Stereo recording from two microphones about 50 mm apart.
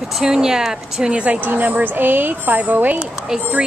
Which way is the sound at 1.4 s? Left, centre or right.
Right.